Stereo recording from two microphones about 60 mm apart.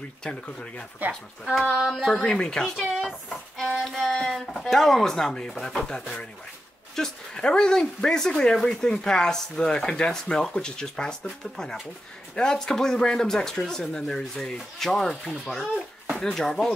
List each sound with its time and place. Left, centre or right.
0.2 s speech: centre
1.4 s child singing: centre
2.0 s speech: centre
3.6 s child singing: centre
4.3 s speech: centre
15.6 s a sound: centre
16.2 s speech: centre